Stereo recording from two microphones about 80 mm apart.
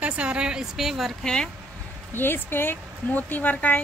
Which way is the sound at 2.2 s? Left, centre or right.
Left.